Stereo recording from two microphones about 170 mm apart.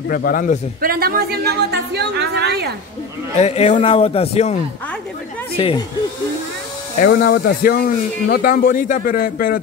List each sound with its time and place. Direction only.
0.1 s speech: 55° left (ahead or behind)
0.7 s a woman's voice: 60° right (ahead or behind)
3.3 s a man's voice: 40° left (ahead or behind)
5.6 s a man's voice: 35° left (ahead or behind)
7.0 s speech: 65° left (ahead or behind)